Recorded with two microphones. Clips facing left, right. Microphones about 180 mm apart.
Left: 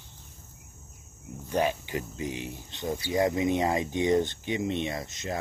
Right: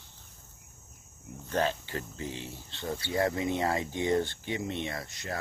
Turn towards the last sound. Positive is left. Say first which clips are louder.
# left 4 dB
turn(degrees=20)  # may be behind; listen again after turning